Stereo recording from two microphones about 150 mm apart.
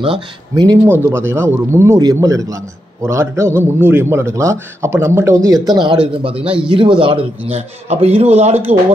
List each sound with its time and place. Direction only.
0.0 s speech: 30° right (ahead or behind)
0.8 s a man's voice: 15° right (ahead or behind)
6.4 s speech: 5° right (ahead or behind)
7.0 s a man's voice: 35° right (ahead or behind)